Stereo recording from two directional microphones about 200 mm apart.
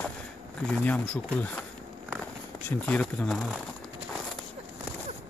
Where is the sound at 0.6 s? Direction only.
5° left (ahead or behind).